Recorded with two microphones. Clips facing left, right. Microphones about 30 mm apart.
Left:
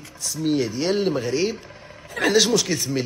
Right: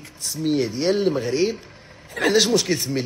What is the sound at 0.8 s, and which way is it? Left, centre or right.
Speech, centre.